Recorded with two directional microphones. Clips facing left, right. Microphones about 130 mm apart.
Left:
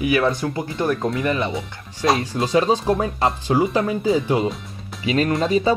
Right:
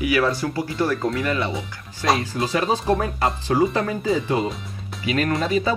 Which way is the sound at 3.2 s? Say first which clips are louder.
Left 1 dB; 20° left (ahead or behind).